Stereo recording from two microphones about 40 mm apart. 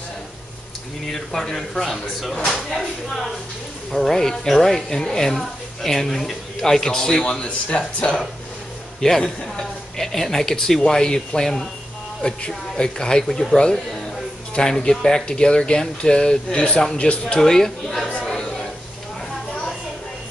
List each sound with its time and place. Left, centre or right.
1.1 s speech: centre
3.9 s speech: centre; by 8.2 s left
9.0 s speech: centre
18.2 s a sound: centre